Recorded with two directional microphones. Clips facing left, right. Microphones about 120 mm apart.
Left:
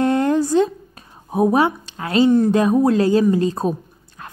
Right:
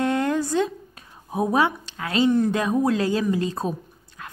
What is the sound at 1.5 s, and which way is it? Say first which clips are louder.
Speech: left 4 dB; 30° left (ahead or behind).